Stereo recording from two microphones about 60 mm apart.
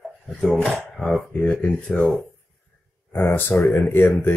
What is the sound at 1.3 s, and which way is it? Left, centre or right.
Speech, left.